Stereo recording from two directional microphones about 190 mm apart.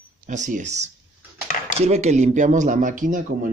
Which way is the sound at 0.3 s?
40° right (ahead or behind).